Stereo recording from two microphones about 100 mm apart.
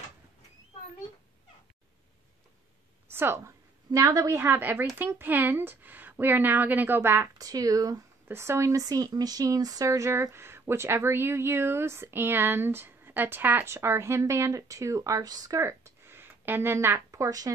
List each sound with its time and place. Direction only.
3.1 s a woman's voice: 25° right (ahead or behind)
7.3 s speech: 40° right (ahead or behind)
8.3 s speech: 25° right (ahead or behind)
15.6 s speech: 25° right (ahead or behind)